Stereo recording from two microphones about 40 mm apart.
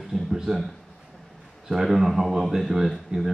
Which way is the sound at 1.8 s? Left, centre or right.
Centre.